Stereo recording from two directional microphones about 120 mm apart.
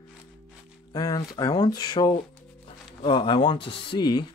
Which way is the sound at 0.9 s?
30° left (ahead or behind).